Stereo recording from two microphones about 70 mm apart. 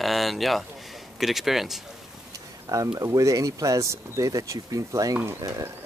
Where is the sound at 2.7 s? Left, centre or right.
Right.